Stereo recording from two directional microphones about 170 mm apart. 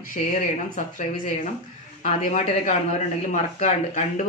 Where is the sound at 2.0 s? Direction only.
45° left (ahead or behind).